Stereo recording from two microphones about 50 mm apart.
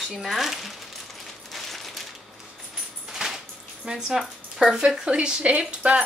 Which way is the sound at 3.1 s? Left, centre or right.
Centre.